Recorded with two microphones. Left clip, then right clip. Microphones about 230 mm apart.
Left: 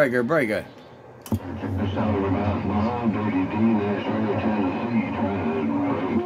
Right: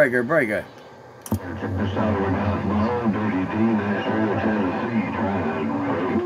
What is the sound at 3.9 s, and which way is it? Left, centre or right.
Music, right.